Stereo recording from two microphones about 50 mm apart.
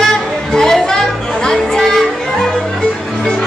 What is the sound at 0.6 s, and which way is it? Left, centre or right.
Music, centre.